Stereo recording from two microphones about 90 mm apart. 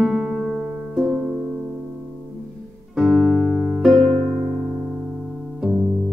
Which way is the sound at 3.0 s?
5° right (ahead or behind).